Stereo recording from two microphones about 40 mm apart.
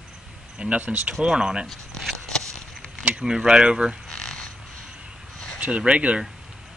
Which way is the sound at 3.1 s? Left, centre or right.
Centre.